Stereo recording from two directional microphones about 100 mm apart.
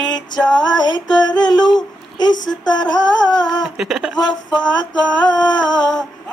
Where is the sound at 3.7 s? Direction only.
5° right (ahead or behind).